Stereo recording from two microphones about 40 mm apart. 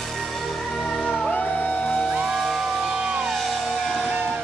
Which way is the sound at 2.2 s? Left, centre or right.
Centre.